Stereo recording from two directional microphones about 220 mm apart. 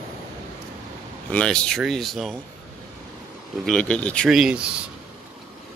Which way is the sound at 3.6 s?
5° left (ahead or behind).